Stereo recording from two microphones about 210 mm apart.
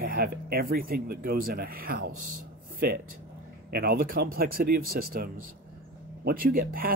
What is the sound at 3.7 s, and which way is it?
Speech, 45° right (ahead or behind).